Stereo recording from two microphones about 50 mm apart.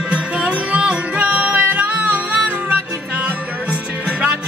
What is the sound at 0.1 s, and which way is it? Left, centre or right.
Music, right.